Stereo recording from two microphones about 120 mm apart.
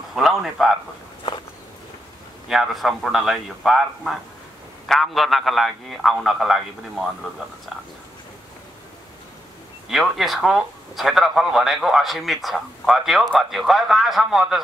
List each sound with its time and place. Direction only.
0.1 s speech: centre (ahead or behind)
1.2 s walk: 40° left (ahead or behind)
2.4 s speech: 5° right (ahead or behind)
9.8 s speech: centre (ahead or behind)